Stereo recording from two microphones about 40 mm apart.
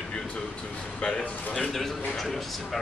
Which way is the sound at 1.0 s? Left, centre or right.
Left.